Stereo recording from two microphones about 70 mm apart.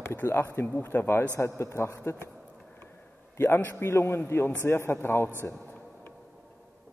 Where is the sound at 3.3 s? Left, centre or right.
Left.